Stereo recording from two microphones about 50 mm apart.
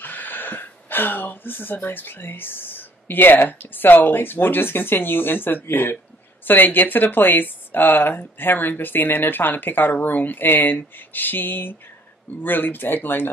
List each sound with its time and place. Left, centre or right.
0.0 s speech: left